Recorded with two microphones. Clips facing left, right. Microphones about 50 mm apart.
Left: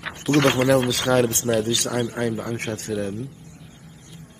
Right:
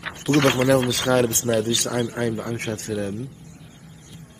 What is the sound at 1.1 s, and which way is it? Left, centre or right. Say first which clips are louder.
Speech: even; centre.